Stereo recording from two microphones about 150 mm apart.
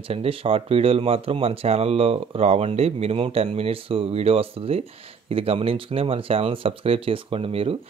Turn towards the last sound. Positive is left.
turn(degrees=-40)  # may be behind; listen again after turning